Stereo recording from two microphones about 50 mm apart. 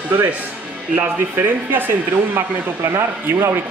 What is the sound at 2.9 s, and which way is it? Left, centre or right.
Speech, right.